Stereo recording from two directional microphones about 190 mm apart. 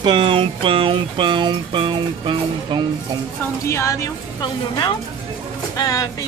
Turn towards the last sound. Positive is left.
turn(degrees=20)  # may be behind; listen again after turning